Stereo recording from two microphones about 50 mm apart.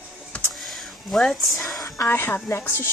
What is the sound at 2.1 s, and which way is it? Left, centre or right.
Speech, left.